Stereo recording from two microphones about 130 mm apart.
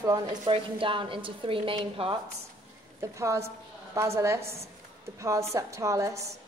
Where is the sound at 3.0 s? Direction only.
25° right (ahead or behind).